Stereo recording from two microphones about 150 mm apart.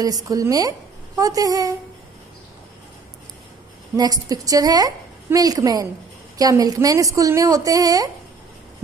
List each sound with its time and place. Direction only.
0.0 s a woman's voice: 25° right (ahead or behind)
3.9 s a woman's voice: 25° right (ahead or behind)